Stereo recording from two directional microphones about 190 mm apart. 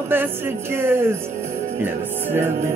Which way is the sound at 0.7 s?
10° right (ahead or behind).